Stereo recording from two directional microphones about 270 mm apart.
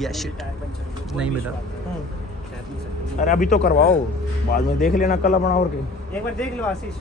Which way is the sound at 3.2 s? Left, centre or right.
Left.